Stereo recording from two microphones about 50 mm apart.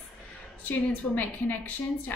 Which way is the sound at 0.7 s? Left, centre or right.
Left.